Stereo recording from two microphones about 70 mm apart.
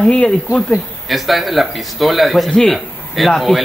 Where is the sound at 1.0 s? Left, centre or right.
Centre.